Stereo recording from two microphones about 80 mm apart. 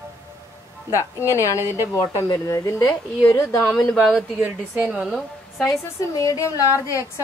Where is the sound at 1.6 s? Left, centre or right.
Right.